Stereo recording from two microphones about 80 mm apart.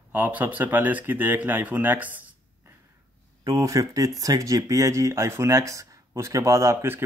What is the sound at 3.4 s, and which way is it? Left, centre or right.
Speech, right.